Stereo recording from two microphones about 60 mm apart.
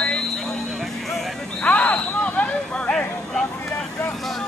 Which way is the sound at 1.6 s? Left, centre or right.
Left.